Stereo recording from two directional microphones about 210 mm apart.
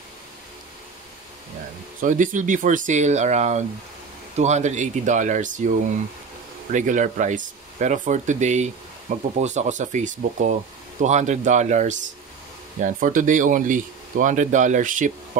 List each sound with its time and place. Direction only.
2.0 s speech: 40° right (ahead or behind)
6.7 s speech: 35° right (ahead or behind)